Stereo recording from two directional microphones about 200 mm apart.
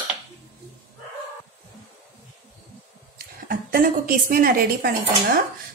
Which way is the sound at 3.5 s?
45° right (ahead or behind).